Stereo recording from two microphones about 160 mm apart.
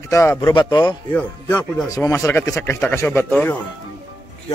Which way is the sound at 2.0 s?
15° left (ahead or behind).